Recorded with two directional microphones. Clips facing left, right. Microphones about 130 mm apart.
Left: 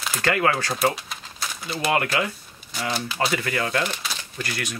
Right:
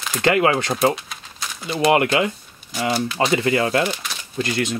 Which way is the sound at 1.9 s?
20° right (ahead or behind).